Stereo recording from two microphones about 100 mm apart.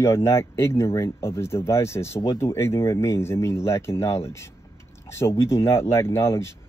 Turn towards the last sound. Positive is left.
turn(degrees=25)  # may be behind; listen again after turning